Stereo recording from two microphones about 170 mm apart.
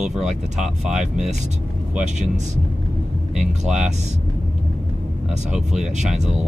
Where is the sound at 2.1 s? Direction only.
45° right (ahead or behind).